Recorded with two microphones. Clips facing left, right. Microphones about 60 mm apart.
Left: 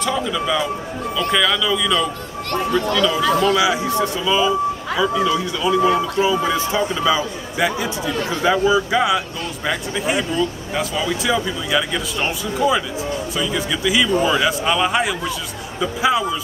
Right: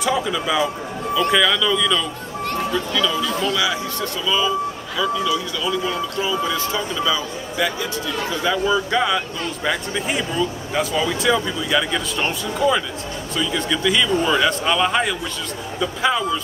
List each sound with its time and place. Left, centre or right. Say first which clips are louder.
0.0 s a man's voice: even; centre
3.5 s speech: left 5 dB; centre